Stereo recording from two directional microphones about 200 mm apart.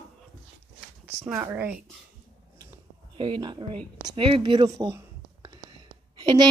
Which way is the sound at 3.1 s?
25° right (ahead or behind).